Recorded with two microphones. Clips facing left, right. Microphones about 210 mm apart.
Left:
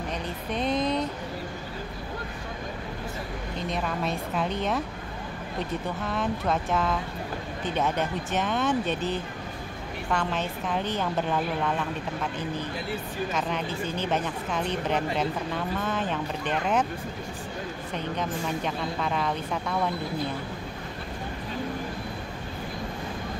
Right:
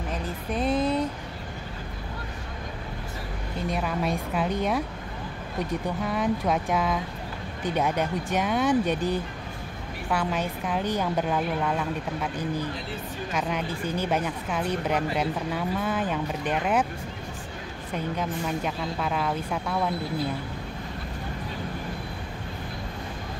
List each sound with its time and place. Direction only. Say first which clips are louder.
0.1 s speech: right 3 dB; 5° right (ahead or behind)
3.5 s a woman's voice: right 2 dB; 10° right (ahead or behind)
17.9 s speech: right 2 dB; 5° right (ahead or behind)